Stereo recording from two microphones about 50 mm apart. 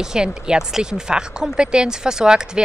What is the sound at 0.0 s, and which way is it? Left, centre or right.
Speech, centre.